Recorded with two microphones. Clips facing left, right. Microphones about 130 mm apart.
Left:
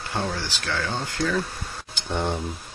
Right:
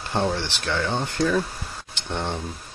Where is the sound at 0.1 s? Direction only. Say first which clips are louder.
Right 4 dB; 20° right (ahead or behind).